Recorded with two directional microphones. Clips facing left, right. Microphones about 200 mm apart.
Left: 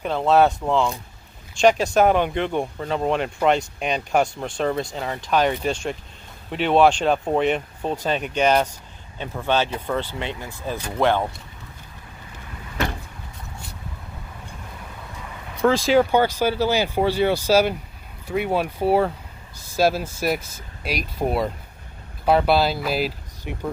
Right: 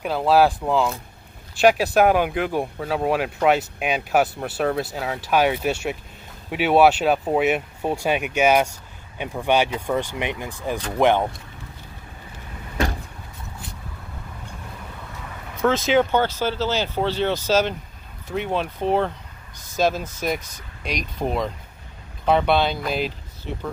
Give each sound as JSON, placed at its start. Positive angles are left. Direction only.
{"t": 0.0, "sound": "speech", "side_deg": -5}
{"t": 15.6, "sound": "speech", "side_deg": 0}